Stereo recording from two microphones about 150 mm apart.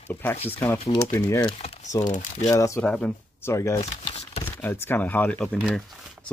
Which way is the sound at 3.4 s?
20° left (ahead or behind).